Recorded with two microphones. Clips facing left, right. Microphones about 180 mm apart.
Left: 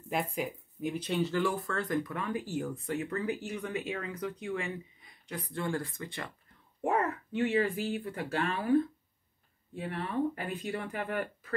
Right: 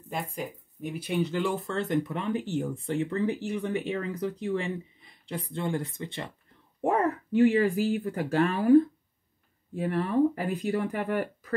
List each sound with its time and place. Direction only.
0.1 s speech: centre (ahead or behind)
1.0 s speech: 15° right (ahead or behind)
6.8 s speech: 35° right (ahead or behind)